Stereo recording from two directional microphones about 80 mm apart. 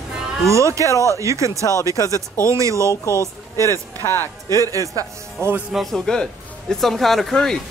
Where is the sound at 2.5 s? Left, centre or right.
Right.